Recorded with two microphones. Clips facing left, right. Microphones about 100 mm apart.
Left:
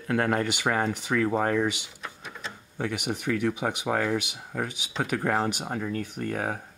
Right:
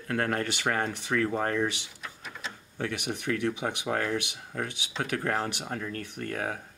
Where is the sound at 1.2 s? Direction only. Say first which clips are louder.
Left 4 dB; 25° left (ahead or behind).